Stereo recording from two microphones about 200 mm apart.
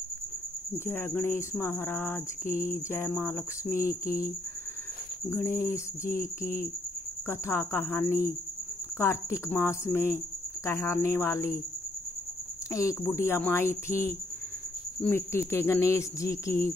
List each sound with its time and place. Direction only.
0.8 s speech: 10° left (ahead or behind)
2.4 s cricket: 40° left (ahead or behind)
2.9 s speech: 10° left (ahead or behind)
4.0 s speech: 45° left (ahead or behind)
5.3 s speech: 15° left (ahead or behind)
6.4 s speech: 45° left (ahead or behind)
7.2 s speech: 10° left (ahead or behind)
12.7 s speech: 15° left (ahead or behind)